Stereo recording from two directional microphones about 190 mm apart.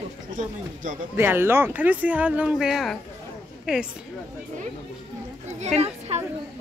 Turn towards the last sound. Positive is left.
turn(degrees=-35)  # may be behind; listen again after turning